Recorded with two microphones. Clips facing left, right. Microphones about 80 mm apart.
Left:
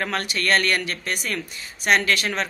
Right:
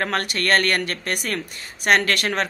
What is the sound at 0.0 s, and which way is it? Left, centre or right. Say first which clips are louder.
Speech: right 2 dB; right.